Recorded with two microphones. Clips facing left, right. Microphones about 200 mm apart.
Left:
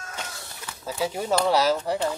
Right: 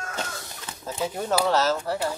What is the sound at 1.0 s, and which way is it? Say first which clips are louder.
Speech: left 1 dB; 10° left (ahead or behind).